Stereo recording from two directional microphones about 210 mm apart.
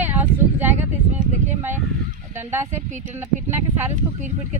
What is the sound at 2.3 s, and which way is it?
Speech, 10° right (ahead or behind).